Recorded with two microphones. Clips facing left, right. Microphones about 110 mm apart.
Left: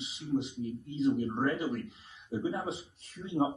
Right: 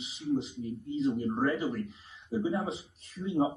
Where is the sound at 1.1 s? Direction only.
25° right (ahead or behind).